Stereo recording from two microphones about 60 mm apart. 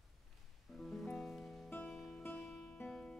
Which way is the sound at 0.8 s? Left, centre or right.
Centre.